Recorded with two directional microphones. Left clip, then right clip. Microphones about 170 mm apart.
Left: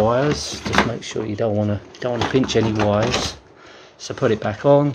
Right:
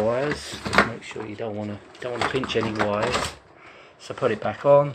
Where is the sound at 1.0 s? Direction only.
45° left (ahead or behind).